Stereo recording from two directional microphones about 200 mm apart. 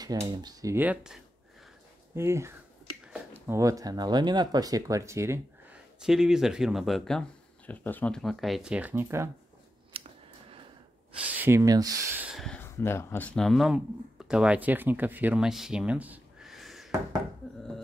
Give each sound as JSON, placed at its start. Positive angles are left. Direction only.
{"t": 0.2, "sound": "speech", "side_deg": -20}
{"t": 6.0, "sound": "speech", "side_deg": 0}
{"t": 9.9, "sound": "scissors", "side_deg": -30}
{"t": 11.3, "sound": "speech", "side_deg": -10}
{"t": 12.3, "sound": "speech", "side_deg": 0}